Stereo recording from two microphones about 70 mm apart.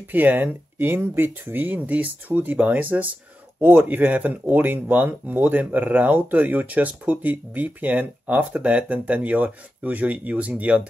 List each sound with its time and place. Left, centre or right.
0.1 s speech: right